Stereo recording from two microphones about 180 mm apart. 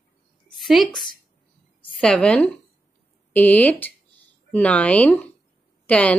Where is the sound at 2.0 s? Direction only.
5° left (ahead or behind).